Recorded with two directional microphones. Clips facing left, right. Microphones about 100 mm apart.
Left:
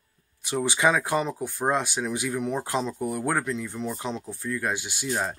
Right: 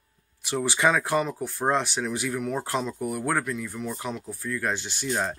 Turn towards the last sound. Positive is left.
turn(degrees=5)  # may be behind; listen again after turning